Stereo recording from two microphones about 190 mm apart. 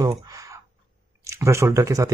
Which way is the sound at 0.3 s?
20° right (ahead or behind).